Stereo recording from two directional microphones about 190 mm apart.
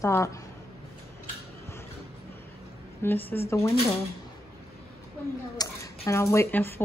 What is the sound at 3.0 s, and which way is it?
Speech, 10° left (ahead or behind).